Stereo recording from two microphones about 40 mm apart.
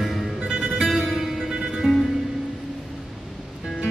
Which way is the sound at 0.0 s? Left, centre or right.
Centre.